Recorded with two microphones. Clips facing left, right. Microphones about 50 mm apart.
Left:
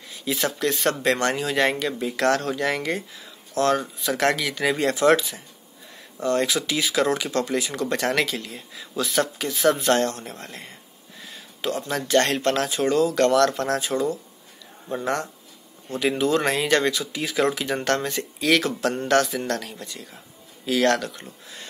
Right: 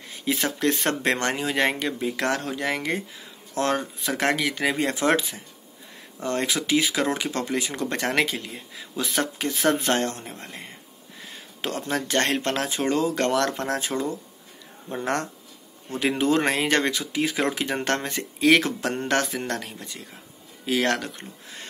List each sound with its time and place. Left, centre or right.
0.1 s speech: right
11.2 s speech: right
16.0 s speech: right